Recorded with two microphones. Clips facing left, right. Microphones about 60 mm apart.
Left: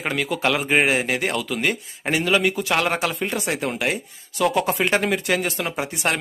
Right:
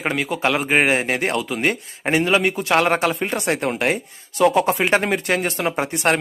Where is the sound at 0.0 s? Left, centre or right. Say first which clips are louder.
Right 2 dB; centre.